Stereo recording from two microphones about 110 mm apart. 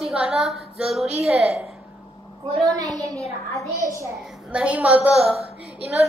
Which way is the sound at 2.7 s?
35° right (ahead or behind).